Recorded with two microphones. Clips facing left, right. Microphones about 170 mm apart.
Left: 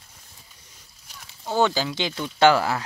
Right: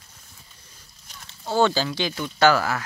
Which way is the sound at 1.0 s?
10° left (ahead or behind).